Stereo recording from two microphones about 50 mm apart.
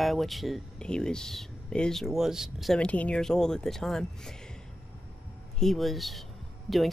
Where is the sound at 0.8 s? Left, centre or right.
Centre.